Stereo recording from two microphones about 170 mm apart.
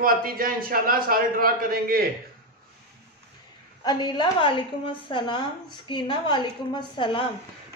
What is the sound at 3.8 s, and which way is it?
A woman's voice, 25° left (ahead or behind).